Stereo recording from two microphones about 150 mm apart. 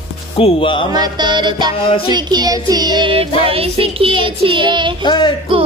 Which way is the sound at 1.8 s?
40° left (ahead or behind).